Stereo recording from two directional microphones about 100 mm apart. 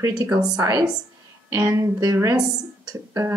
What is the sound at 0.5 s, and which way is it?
Speech, 40° right (ahead or behind).